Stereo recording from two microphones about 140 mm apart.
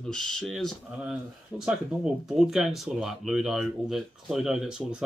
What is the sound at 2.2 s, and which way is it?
Speech, centre (ahead or behind).